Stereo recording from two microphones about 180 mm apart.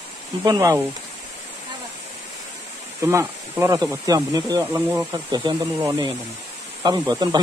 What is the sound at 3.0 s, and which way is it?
Speech, 15° right (ahead or behind).